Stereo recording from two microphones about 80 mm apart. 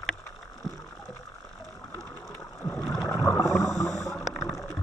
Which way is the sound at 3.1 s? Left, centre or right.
Left.